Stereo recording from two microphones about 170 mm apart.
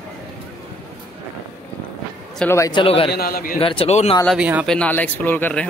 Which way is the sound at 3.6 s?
35° left (ahead or behind).